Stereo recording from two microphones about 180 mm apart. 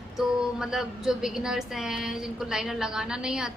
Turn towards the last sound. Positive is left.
turn(degrees=-5)  # may be behind; listen again after turning